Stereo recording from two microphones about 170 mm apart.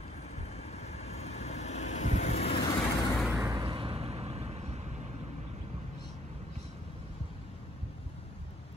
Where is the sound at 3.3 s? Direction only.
20° right (ahead or behind).